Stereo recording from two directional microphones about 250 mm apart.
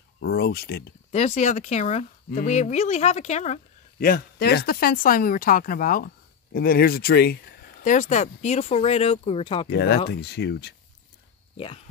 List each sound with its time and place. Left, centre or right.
0.2 s speech: left
1.1 s speech: left
9.7 s speech: left
11.5 s speech: left